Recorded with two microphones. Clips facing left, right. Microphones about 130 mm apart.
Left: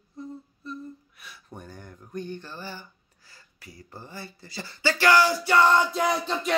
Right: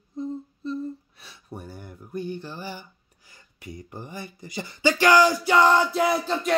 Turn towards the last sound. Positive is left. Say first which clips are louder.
# right 2 dB
turn(degrees=0)  # may be behind; listen again after turning